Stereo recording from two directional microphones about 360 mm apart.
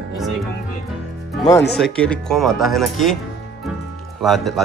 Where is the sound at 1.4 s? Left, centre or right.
Centre.